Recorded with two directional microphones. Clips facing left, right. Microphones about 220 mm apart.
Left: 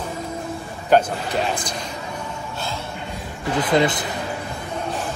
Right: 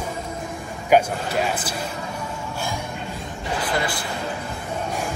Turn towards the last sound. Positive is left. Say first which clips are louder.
# left 7 dB
turn(degrees=20)  # may be behind; listen again after turning